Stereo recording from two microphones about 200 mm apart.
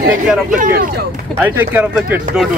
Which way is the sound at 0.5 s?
50° right (ahead or behind).